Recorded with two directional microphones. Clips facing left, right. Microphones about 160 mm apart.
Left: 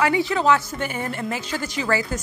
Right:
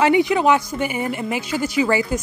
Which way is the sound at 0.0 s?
20° right (ahead or behind).